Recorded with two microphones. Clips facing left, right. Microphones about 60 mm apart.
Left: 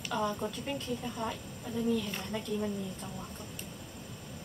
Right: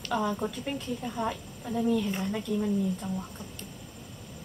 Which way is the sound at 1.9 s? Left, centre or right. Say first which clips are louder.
Right 5 dB; centre.